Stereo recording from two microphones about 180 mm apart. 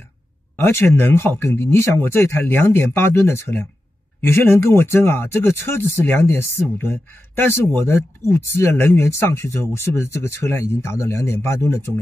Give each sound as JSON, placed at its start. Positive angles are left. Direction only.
{"t": 0.6, "sound": "speech", "side_deg": 15}